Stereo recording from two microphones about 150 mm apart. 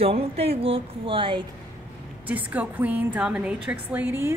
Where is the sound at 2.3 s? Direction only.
10° right (ahead or behind).